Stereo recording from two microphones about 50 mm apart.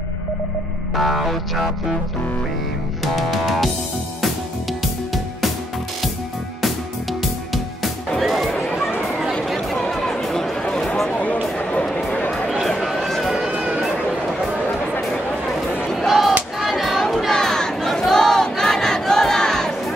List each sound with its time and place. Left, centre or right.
0.9 s music: centre
3.0 s music: centre
7.5 s music: centre
9.8 s music: centre
10.6 s a sound: centre
12.6 s a sound: centre
16.1 s a sound: centre
17.3 s crowd: centre
18.1 s battle cry: centre